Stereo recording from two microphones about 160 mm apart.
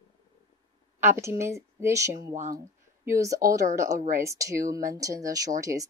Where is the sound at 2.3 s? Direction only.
50° right (ahead or behind).